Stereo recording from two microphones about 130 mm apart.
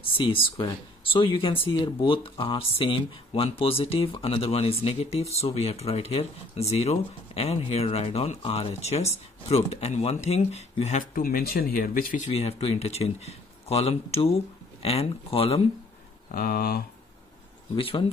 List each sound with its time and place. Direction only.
0.0 s speech: 40° left (ahead or behind)
11.7 s speech: 90° left
12.3 s speech: 50° left (ahead or behind)
17.7 s speech: 45° left (ahead or behind)